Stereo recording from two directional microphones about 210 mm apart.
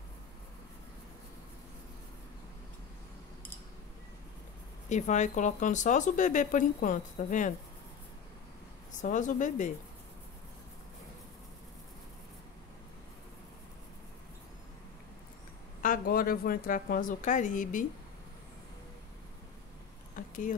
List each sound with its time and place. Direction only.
4.8 s speech: 35° left (ahead or behind)
8.9 s speech: 35° left (ahead or behind)
15.8 s speech: 40° left (ahead or behind)
20.2 s a sound: 40° left (ahead or behind)